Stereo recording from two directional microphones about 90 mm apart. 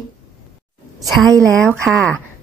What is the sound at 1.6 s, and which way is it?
Speech, 5° left (ahead or behind).